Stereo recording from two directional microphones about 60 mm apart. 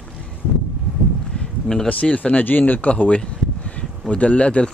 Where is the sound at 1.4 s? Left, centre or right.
Centre.